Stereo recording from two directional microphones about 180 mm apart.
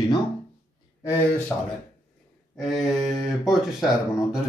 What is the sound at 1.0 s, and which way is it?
Speech, 10° left (ahead or behind).